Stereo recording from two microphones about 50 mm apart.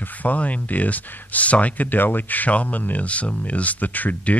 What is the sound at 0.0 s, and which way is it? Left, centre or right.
Speech, left.